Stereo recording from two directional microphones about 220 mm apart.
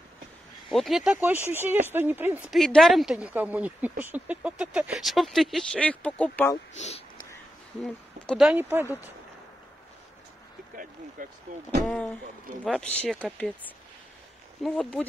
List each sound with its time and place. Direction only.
0.7 s speech: centre (ahead or behind)
6.8 s a sound: 30° left (ahead or behind)
7.8 s speech: centre (ahead or behind)
11.2 s speech: 40° right (ahead or behind)
11.8 s speech: centre (ahead or behind)
14.6 s speech: 5° left (ahead or behind)